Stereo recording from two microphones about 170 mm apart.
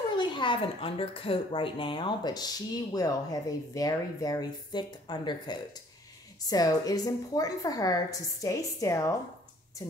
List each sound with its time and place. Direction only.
0.2 s speech: 30° left (ahead or behind)